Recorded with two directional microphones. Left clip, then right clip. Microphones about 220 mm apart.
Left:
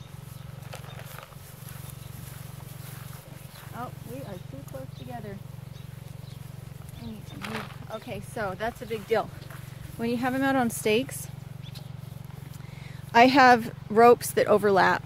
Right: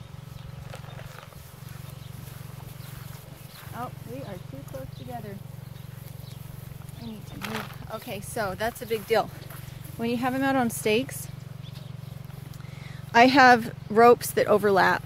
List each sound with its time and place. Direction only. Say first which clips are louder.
7.3 s speech: right 2 dB; 20° right (ahead or behind)
7.9 s speech: right 2 dB; 40° right (ahead or behind)
9.9 s speech: right 1 dB; centre (ahead or behind)
13.1 s speech: right 1 dB; centre (ahead or behind)